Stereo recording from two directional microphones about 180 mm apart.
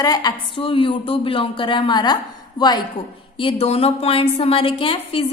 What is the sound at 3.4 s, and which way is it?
A woman's voice, 35° left (ahead or behind).